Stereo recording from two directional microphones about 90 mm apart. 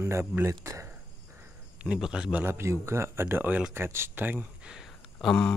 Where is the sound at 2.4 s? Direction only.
30° right (ahead or behind).